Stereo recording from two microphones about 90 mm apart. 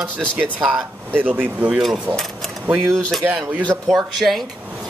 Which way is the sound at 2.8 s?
5° left (ahead or behind).